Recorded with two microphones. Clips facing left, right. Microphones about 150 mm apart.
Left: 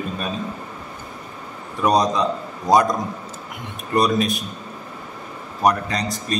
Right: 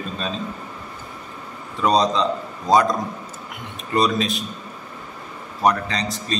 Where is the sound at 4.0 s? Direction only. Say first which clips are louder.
Left 1 dB; 15° left (ahead or behind).